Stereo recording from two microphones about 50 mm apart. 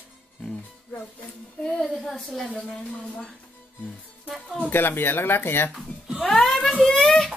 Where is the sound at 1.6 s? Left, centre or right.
Centre.